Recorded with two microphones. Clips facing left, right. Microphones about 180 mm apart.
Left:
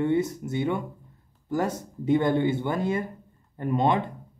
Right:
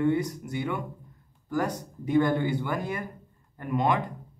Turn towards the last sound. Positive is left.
turn(degrees=25)  # may be behind; listen again after turning